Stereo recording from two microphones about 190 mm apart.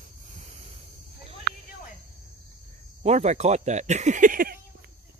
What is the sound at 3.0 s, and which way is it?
Speech, 35° right (ahead or behind).